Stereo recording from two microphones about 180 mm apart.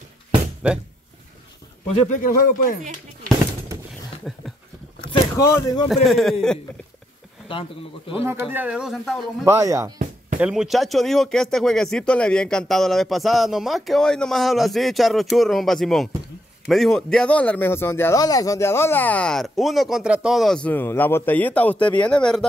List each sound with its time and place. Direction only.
0.6 s speech: 5° right (ahead or behind)
2.0 s speech: 45° left (ahead or behind)
5.5 s a man's voice: 15° left (ahead or behind)
6.0 s speech: centre (ahead or behind)
7.5 s speech: 30° left (ahead or behind)
8.1 s speech: 15° right (ahead or behind)
9.4 s speech: 15° right (ahead or behind)
10.4 s a man's voice: 5° right (ahead or behind)